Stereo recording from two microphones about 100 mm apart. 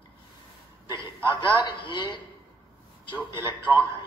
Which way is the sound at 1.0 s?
50° left (ahead or behind).